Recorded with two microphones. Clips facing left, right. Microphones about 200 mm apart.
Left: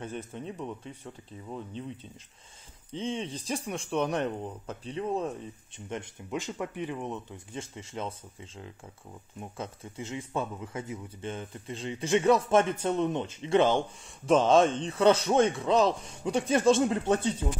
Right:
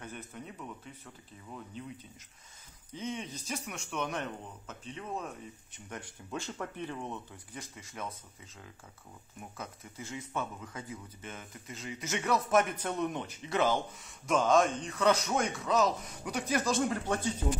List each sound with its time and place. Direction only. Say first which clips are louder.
0.0 s speech: left 7 dB; 30° left (ahead or behind)
2.9 s speech: left 5 dB; 30° left (ahead or behind)